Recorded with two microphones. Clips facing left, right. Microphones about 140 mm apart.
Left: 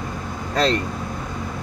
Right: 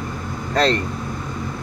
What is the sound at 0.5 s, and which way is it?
Speech, 10° left (ahead or behind).